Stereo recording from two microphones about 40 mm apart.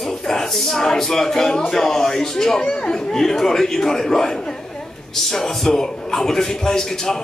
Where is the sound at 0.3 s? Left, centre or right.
Centre.